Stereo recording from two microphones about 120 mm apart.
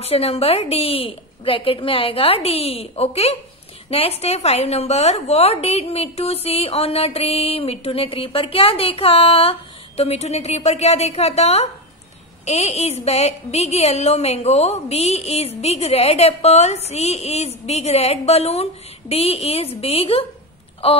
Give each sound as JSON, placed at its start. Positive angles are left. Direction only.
{"t": 0.0, "sound": "a woman's voice", "side_deg": 55}